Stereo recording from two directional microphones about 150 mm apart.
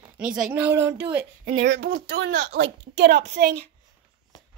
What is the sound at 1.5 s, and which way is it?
Speech, 70° right (ahead or behind).